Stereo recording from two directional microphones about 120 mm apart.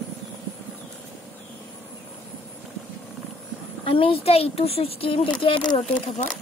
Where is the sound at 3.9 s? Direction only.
50° left (ahead or behind).